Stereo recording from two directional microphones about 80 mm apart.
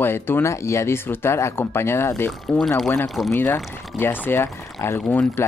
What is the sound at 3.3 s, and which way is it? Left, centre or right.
Speech, left.